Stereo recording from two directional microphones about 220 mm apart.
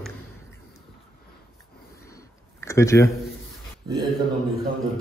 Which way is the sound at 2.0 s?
15° left (ahead or behind).